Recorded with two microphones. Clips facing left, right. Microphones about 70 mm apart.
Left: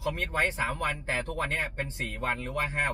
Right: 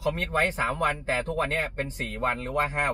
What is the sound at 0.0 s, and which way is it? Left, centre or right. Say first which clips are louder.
A man's voice: right 3 dB; right.